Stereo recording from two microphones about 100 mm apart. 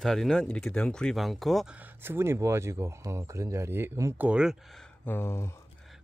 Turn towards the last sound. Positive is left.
turn(degrees=25)  # may be behind; listen again after turning